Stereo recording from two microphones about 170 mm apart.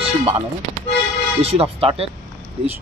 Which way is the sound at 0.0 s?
35° right (ahead or behind).